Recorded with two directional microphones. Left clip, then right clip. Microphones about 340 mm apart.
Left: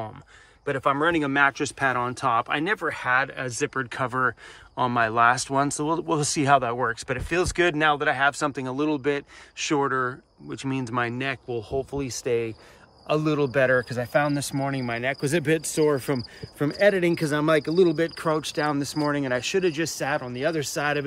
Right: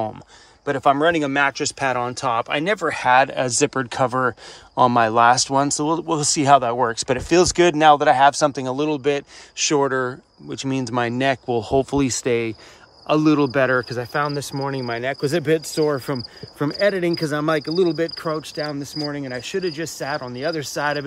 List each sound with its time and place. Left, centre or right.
0.7 s speech: centre
11.5 s speech: right
13.0 s speech: centre